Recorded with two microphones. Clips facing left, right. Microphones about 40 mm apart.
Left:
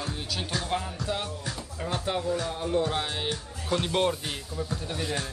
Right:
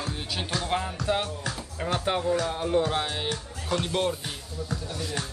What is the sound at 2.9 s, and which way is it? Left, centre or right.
Speech, centre.